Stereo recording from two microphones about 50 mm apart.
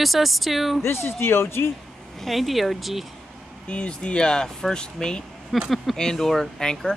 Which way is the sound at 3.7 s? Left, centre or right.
Left.